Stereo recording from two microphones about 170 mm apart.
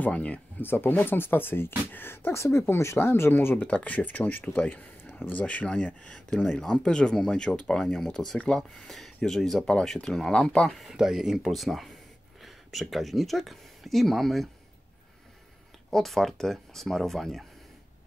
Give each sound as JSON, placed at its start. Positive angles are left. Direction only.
{"t": 0.0, "sound": "speech", "side_deg": 10}
{"t": 15.9, "sound": "speech", "side_deg": 0}